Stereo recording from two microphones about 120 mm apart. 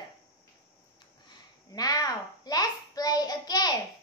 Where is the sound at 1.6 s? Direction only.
30° left (ahead or behind).